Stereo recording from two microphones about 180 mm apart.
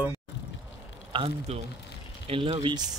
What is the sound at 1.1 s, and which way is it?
Speech, 30° right (ahead or behind).